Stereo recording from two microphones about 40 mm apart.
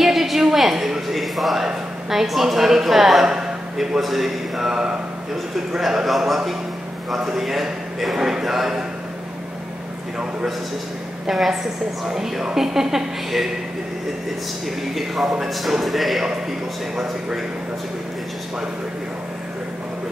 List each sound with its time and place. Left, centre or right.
0.0 s a sound: centre
2.0 s a man's voice: centre
3.3 s a sound: centre
3.7 s a man's voice: centre
11.2 s a man's voice: centre
15.0 s a man's voice: centre
15.4 s music: centre
16.9 s a man's voice: centre